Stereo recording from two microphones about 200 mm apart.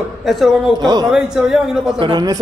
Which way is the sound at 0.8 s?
20° right (ahead or behind).